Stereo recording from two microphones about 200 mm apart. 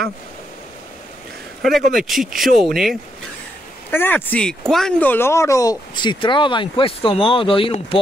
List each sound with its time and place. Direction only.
1.6 s speech: centre (ahead or behind)
3.9 s speech: 10° left (ahead or behind); by 8.0 s 25° left (ahead or behind)